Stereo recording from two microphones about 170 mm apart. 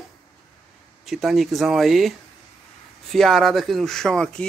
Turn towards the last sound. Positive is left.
turn(degrees=5)  # may be behind; listen again after turning